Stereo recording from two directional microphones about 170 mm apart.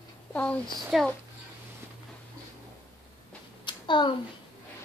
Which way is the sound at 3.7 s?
25° left (ahead or behind).